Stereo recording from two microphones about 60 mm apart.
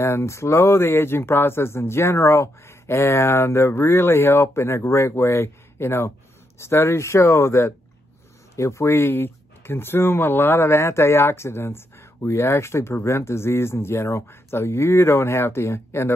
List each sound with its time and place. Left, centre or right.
0.0 s speech: left
9.0 s speech: left